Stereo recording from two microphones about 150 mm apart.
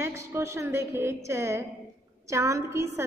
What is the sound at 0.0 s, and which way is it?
A woman's voice, 15° right (ahead or behind).